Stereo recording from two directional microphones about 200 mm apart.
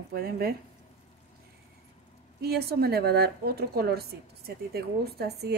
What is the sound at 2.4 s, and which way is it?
Speech, 50° right (ahead or behind).